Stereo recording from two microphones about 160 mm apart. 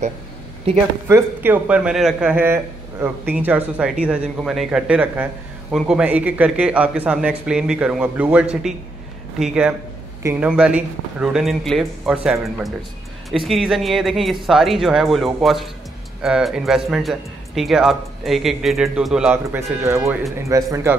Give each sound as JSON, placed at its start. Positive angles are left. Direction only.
{"t": 1.0, "sound": "speech", "side_deg": -15}
{"t": 19.3, "sound": "speech", "side_deg": -15}